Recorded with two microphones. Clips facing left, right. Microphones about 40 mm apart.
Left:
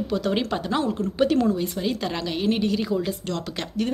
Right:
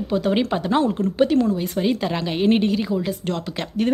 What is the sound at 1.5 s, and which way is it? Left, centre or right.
Speech, centre.